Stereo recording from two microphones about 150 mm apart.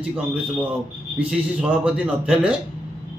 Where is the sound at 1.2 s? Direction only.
10° right (ahead or behind).